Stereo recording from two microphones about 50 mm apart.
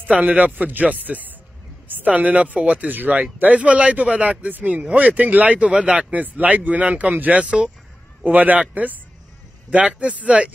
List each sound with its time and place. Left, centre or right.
0.0 s speech: right
6.1 s speech: right